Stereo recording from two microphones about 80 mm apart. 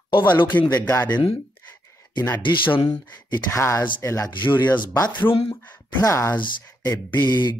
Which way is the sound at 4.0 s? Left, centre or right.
Left.